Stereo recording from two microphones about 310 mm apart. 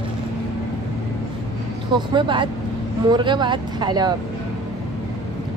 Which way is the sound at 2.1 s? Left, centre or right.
Centre.